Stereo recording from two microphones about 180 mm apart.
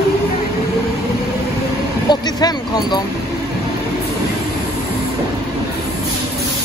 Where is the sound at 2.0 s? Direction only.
20° left (ahead or behind).